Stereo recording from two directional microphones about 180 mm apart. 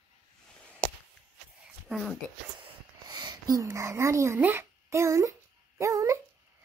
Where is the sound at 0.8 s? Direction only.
55° right (ahead or behind).